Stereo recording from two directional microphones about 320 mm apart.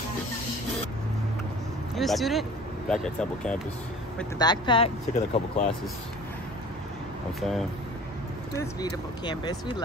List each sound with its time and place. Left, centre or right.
2.0 s speech: centre
7.3 s speech: centre
8.5 s speech: centre